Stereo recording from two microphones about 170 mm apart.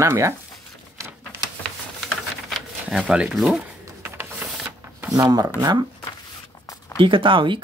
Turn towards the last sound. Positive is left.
turn(degrees=-30)  # may be behind; listen again after turning